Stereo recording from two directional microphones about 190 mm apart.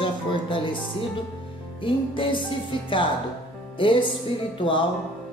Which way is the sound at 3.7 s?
25° left (ahead or behind).